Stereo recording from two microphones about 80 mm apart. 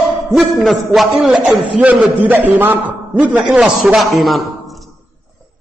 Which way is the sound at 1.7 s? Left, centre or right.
Centre.